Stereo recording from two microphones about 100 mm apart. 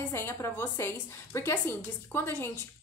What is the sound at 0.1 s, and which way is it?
A woman's voice, 25° left (ahead or behind).